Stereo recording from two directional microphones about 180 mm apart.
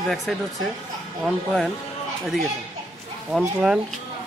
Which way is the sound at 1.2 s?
Centre (ahead or behind).